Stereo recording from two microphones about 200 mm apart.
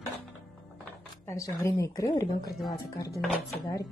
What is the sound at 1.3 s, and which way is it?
Speech, 15° left (ahead or behind).